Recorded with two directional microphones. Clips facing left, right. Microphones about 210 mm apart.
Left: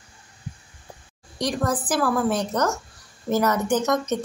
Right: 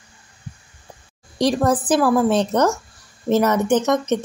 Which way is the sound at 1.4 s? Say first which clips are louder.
Right 7 dB; 25° right (ahead or behind).